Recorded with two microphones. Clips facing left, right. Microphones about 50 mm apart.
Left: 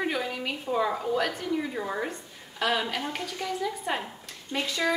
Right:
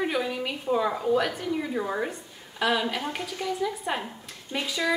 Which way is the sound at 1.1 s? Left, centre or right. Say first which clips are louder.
Right 2 dB; centre.